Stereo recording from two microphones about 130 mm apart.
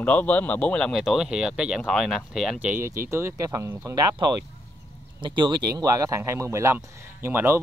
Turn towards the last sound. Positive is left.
turn(degrees=-20)  # may be behind; listen again after turning